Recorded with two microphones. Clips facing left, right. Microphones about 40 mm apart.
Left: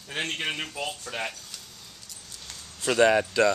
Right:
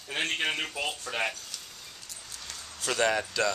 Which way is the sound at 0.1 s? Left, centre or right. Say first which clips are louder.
Right 1 dB; centre.